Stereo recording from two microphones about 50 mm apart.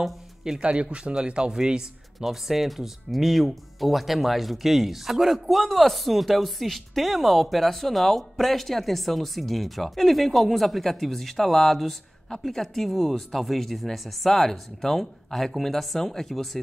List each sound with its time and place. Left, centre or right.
0.0 s a sound: centre
0.6 s speech: right
2.1 s speech: centre